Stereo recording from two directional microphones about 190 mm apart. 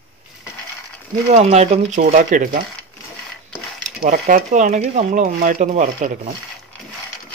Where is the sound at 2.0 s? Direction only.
45° right (ahead or behind).